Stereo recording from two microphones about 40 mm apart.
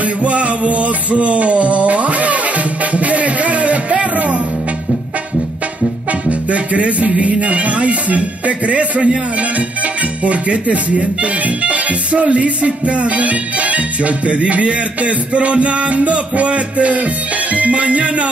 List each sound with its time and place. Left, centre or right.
0.0 s music: right
6.2 s music: right
10.2 s music: right